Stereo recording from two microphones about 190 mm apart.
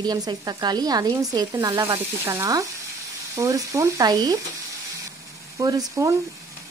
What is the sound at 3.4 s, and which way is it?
Speech, 15° right (ahead or behind).